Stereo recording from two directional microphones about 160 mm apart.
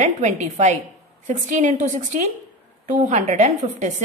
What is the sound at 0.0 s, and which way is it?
A woman's voice, 45° right (ahead or behind).